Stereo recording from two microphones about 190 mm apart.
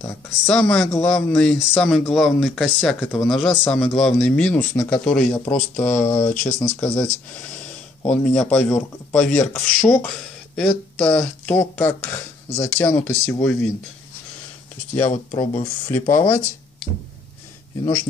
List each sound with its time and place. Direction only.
0.0 s speech: 5° left (ahead or behind)
15.3 s speech: 15° left (ahead or behind)